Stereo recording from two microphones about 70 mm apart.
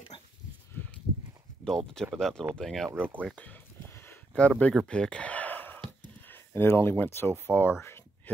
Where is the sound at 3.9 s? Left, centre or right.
Left.